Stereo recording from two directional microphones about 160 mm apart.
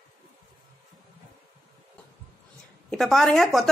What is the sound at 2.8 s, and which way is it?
Speech, centre (ahead or behind).